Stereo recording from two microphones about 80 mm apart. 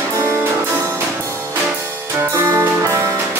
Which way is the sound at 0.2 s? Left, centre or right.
Right.